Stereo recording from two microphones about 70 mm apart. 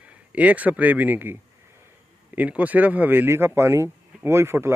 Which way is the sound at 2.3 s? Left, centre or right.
Right.